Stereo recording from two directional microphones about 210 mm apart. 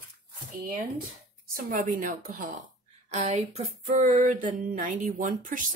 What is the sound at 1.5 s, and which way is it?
Speech, 40° right (ahead or behind).